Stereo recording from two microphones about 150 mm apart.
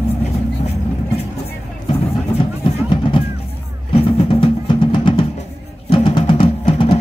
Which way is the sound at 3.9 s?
35° left (ahead or behind).